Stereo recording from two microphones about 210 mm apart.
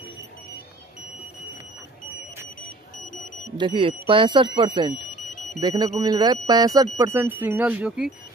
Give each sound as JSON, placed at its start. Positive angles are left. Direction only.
{"t": 3.5, "sound": "speech", "side_deg": -25}